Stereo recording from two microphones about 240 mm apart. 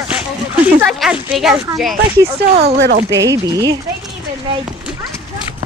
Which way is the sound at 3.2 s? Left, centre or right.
Centre.